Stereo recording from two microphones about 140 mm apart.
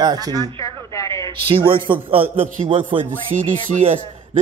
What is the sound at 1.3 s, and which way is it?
A man's voice, 40° right (ahead or behind).